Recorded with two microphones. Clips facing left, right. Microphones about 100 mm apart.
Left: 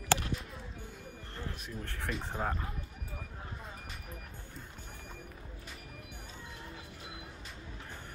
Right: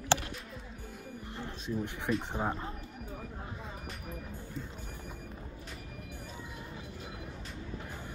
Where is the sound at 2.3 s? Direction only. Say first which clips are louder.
Right 2 dB; 15° right (ahead or behind).